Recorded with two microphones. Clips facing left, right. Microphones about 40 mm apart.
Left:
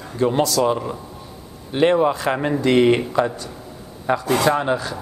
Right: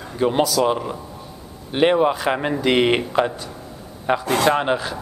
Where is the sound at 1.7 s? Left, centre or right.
Centre.